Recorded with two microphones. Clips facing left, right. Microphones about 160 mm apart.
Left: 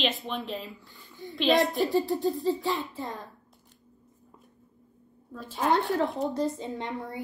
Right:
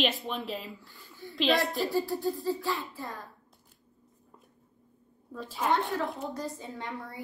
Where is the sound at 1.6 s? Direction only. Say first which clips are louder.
Left 4 dB; 20° left (ahead or behind).